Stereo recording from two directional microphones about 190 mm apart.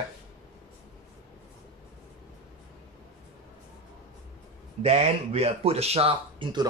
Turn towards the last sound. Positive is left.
turn(degrees=-25)  # may be behind; listen again after turning